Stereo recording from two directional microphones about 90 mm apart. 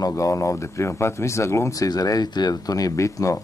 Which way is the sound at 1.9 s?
45° left (ahead or behind).